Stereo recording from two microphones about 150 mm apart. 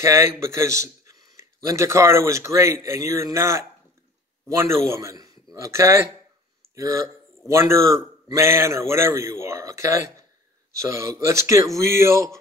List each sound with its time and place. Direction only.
0.0 s speech: 20° right (ahead or behind)
4.6 s speech: 20° right (ahead or behind)